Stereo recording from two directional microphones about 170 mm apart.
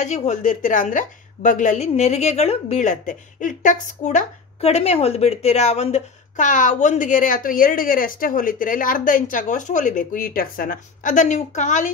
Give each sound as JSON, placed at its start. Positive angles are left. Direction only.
{"t": 0.0, "sound": "a woman's voice", "side_deg": 45}